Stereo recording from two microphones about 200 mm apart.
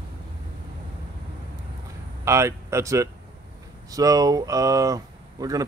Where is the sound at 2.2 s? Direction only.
15° right (ahead or behind).